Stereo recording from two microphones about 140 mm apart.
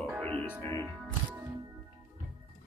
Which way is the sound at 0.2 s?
10° left (ahead or behind).